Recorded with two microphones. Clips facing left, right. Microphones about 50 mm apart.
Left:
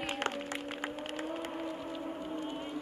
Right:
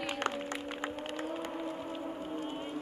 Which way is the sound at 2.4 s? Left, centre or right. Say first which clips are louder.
Even; centre.